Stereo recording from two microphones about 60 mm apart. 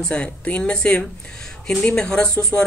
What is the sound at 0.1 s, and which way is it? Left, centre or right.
Speech, left.